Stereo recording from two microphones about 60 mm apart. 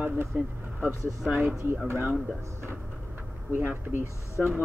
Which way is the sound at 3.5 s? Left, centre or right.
Right.